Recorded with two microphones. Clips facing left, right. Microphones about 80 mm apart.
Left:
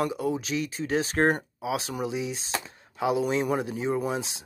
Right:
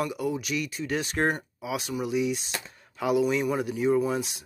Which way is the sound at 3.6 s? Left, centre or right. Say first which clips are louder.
Right 4 dB; left.